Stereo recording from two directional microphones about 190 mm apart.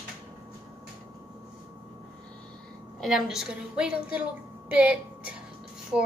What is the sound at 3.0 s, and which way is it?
A woman's voice, centre (ahead or behind).